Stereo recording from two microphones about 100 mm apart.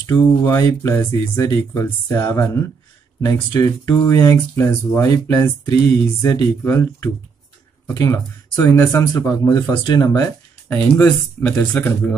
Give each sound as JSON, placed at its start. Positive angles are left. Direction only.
{"t": 0.0, "sound": "speech", "side_deg": 35}
{"t": 9.5, "sound": "speech", "side_deg": 40}
{"t": 10.7, "sound": "speech", "side_deg": 20}